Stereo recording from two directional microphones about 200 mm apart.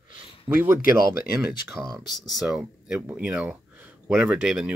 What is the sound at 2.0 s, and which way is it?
Speech, 20° left (ahead or behind).